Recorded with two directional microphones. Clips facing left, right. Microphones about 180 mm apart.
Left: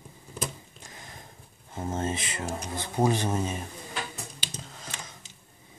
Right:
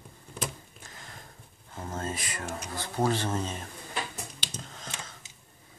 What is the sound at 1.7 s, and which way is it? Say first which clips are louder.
Speech: left 5 dB; 20° left (ahead or behind).